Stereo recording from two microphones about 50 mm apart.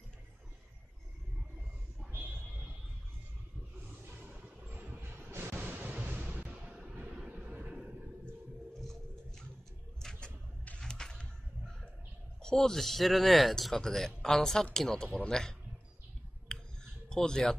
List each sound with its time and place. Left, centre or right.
4.2 s music: right
5.0 s waves: right
5.5 s waves: right
6.1 s music: right
7.2 s vehicle: right
9.9 s a sound: centre
12.4 s speech: centre
16.4 s a sound: centre